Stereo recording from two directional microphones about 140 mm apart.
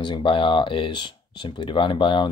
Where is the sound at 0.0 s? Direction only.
35° left (ahead or behind).